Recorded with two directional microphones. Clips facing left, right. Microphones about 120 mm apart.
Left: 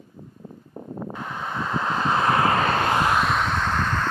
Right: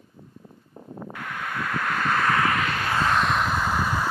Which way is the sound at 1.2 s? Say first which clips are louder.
Even; 20° left (ahead or behind).